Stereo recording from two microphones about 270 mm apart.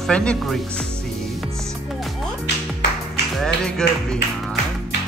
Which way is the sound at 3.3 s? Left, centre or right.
Centre.